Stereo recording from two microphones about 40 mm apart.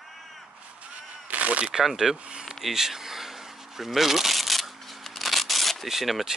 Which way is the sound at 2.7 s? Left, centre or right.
Centre.